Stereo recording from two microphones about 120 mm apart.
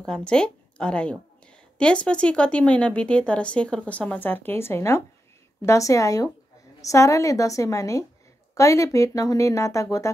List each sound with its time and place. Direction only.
0.0 s a woman's voice: 5° left (ahead or behind); by 10.1 s 25° left (ahead or behind)